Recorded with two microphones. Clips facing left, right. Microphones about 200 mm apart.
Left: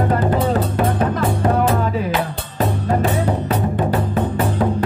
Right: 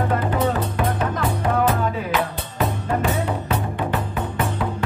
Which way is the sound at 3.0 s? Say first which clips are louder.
Left 4 dB; 35° left (ahead or behind).